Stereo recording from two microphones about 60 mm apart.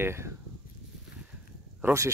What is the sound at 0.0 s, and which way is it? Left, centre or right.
Speech, right.